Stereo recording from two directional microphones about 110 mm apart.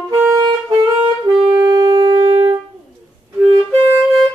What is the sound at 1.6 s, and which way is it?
Shofar, 30° right (ahead or behind).